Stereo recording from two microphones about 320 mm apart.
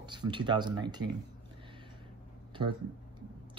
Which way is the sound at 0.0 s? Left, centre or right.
Centre.